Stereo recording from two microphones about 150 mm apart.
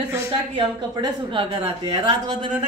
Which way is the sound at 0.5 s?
30° right (ahead or behind).